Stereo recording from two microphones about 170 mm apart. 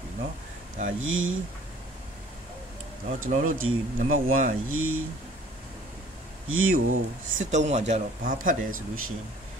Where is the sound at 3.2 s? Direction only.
50° right (ahead or behind).